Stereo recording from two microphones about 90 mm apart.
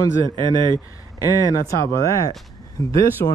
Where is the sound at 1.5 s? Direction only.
35° left (ahead or behind).